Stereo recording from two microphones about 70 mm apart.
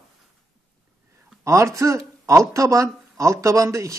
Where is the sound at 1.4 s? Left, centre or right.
Right.